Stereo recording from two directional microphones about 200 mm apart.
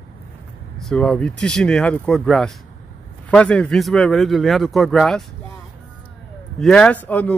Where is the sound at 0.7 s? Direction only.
Centre (ahead or behind).